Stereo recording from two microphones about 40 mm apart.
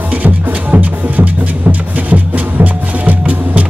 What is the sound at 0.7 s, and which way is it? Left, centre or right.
Music, right.